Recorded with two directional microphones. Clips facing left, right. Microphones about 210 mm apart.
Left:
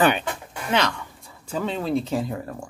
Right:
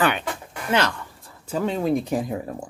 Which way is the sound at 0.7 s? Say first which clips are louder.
Right 1 dB; 5° right (ahead or behind).